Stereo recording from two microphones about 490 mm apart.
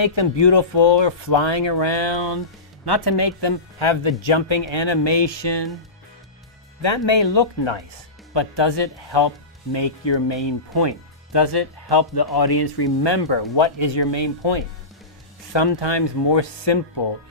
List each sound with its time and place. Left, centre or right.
0.0 s speech: left
6.8 s speech: left